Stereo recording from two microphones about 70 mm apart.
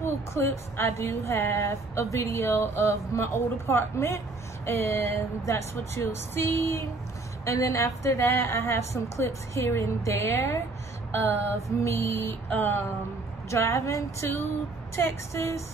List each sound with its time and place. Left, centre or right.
0.0 s speech: left
6.3 s a woman's voice: left
11.1 s a sound: left
11.8 s speech: left
12.4 s a sound: left
13.5 s a woman's voice: left